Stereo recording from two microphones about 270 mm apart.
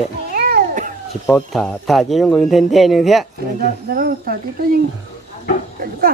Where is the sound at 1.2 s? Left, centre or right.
Centre.